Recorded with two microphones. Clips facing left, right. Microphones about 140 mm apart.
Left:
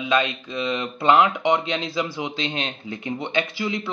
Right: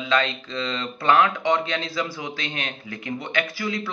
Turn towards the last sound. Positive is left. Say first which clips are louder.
# left 1 dB
turn(degrees=20)  # may be behind; listen again after turning